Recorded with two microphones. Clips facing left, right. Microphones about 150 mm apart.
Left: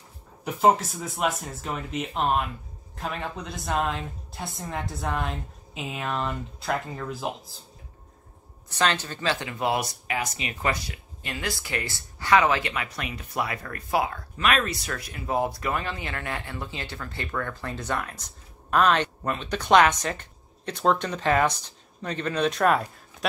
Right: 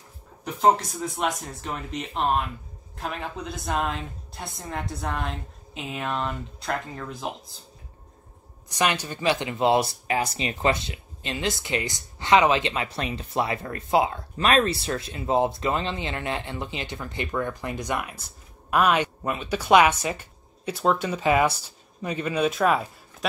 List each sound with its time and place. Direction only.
0.6 s a woman's voice: 5° left (ahead or behind)
8.6 s speech: 15° right (ahead or behind)